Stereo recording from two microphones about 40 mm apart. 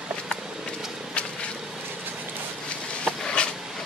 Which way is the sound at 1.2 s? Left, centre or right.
Left.